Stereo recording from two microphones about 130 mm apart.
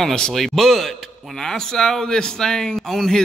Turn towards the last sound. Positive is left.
turn(degrees=5)  # may be behind; listen again after turning